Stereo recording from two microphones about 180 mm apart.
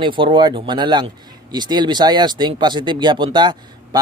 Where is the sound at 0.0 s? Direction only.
25° right (ahead or behind).